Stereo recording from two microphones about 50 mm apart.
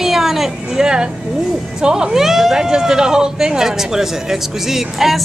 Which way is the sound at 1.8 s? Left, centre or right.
Centre.